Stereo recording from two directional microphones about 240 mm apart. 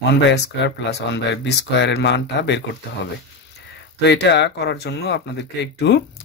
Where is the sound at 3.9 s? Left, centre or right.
Left.